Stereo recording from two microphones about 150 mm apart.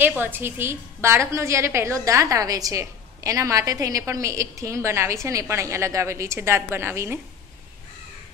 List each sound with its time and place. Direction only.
0.0 s a woman's voice: 10° right (ahead or behind)